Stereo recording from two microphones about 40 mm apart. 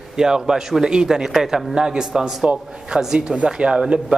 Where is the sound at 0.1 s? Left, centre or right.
Centre.